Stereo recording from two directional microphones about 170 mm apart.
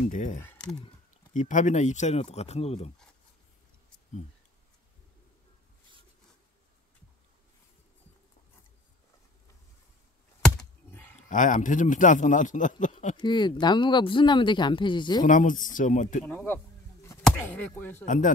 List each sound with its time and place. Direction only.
0.0 s a man's voice: 45° left (ahead or behind)
0.4 s speech: 10° left (ahead or behind)
1.3 s speech: 50° left (ahead or behind)
10.9 s a sound: 10° left (ahead or behind)
11.2 s a man's voice: 50° left (ahead or behind)
13.2 s speech: 25° left (ahead or behind)
15.2 s a man's voice: 50° left (ahead or behind)
16.3 s a sound: 10° left (ahead or behind)
17.4 s speech: 10° left (ahead or behind)
18.0 s a man's voice: 45° left (ahead or behind)